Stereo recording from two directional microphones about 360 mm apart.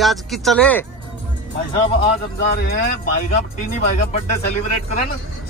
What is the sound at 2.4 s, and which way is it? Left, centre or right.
Speech, left.